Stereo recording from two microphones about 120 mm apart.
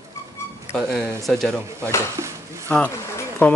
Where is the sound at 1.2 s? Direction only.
Centre (ahead or behind).